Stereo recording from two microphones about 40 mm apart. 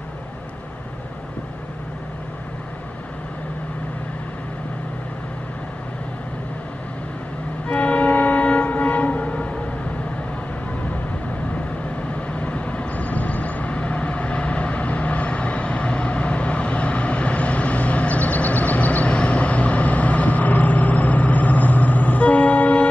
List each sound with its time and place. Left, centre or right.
7.6 s train: left
12.4 s vehicle: left